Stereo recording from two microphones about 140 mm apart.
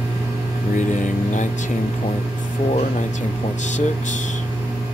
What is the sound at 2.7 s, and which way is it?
Speech, 55° left (ahead or behind).